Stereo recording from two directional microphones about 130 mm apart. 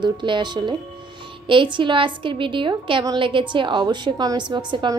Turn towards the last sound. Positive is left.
turn(degrees=-35)  # may be behind; listen again after turning